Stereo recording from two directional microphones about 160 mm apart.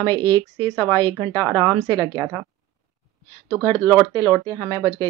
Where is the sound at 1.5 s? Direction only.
Centre (ahead or behind).